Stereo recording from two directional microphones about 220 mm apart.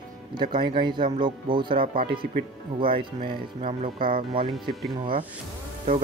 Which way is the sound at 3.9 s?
40° right (ahead or behind).